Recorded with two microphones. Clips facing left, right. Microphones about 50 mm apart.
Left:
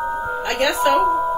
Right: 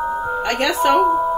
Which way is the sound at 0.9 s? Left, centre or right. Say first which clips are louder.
Right 2 dB; centre.